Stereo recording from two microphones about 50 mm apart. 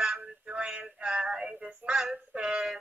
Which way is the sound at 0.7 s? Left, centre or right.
Centre.